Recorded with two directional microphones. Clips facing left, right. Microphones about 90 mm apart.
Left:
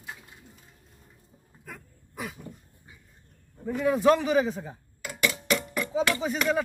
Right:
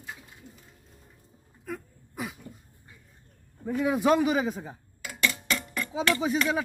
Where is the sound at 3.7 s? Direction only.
10° right (ahead or behind).